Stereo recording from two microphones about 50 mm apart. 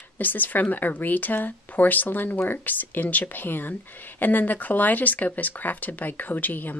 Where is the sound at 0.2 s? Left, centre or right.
Left.